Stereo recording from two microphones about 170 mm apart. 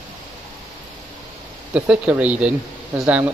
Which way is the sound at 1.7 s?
5° right (ahead or behind).